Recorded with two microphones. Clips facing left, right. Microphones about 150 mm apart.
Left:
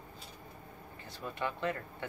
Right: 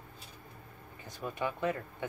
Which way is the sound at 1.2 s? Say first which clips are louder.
Right 2 dB; 15° right (ahead or behind).